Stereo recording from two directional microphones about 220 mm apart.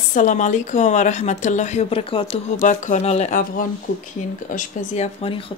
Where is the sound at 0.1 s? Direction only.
35° left (ahead or behind).